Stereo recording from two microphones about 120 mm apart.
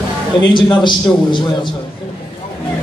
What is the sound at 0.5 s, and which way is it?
Speech, 40° left (ahead or behind).